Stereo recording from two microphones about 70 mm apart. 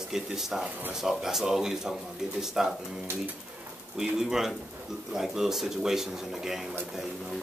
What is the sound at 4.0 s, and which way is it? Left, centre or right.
Speech, centre.